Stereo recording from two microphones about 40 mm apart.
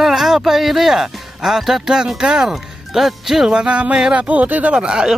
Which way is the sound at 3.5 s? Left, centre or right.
Right.